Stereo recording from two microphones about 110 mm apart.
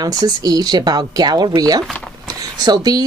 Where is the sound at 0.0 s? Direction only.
35° right (ahead or behind).